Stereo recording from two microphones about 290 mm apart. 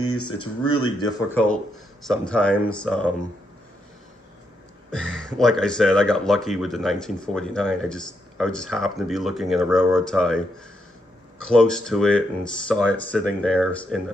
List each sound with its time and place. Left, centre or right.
0.1 s speech: centre
4.9 s speech: centre
11.4 s speech: centre